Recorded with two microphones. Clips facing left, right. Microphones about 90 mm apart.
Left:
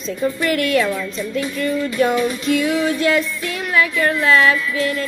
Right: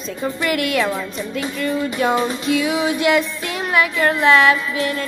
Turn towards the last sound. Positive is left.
turn(degrees=-25)  # may be behind; listen again after turning